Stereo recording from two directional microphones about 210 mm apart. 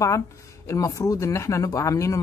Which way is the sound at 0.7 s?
15° left (ahead or behind).